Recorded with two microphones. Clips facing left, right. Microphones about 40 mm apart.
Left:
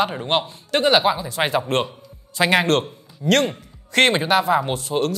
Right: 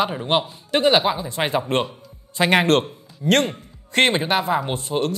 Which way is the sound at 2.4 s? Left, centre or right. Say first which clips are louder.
Even; centre.